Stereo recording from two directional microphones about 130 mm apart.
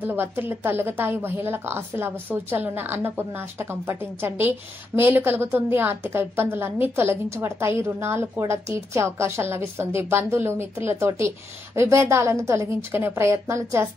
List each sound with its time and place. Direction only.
0.0 s a woman's voice: 15° right (ahead or behind)